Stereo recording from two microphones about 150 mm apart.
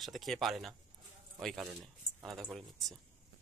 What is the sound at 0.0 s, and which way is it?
Speech, centre (ahead or behind).